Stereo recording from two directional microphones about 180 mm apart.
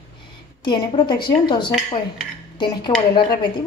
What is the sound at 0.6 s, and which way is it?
A woman's voice, 25° left (ahead or behind).